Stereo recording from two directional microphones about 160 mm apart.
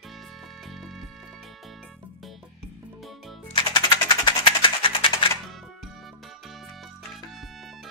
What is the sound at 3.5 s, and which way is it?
Music, 30° left (ahead or behind).